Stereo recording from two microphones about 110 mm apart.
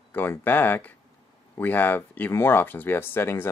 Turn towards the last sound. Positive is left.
turn(degrees=20)  # may be behind; listen again after turning